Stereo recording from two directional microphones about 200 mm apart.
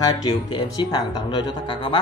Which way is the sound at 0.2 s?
20° left (ahead or behind).